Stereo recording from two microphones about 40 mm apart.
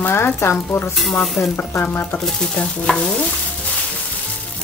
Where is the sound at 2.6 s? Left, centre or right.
Left.